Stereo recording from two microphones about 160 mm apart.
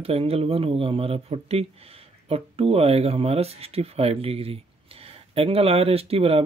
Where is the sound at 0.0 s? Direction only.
40° right (ahead or behind).